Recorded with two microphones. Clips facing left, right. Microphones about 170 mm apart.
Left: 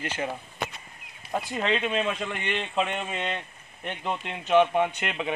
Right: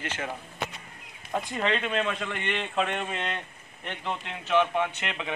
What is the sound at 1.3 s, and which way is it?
A man's voice, 5° left (ahead or behind).